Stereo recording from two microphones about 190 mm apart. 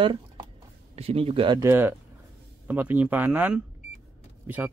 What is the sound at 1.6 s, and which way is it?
Speech, 10° right (ahead or behind).